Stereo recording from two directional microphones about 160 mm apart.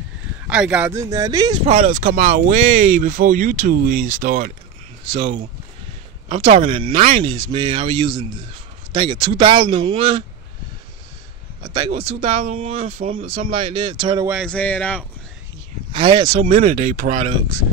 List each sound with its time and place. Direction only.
0.5 s speech: 5° right (ahead or behind)
0.9 s speech: 20° right (ahead or behind)
1.7 s speech: 55° right (ahead or behind)
6.2 s speech: 35° right (ahead or behind)
7.0 s speech: 55° right (ahead or behind)
7.2 s speech: 30° right (ahead or behind)
11.6 s speech: 30° right (ahead or behind); by 13.7 s 50° right (ahead or behind)
13.7 s speech: 35° right (ahead or behind)
14.4 s speech: 10° left (ahead or behind)
15.9 s speech: 30° right (ahead or behind)
16.8 s speech: 55° right (ahead or behind)